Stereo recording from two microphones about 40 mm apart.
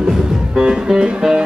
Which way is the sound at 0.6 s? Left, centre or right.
Centre.